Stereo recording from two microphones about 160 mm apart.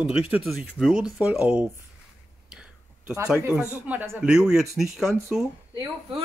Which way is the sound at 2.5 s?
5° right (ahead or behind).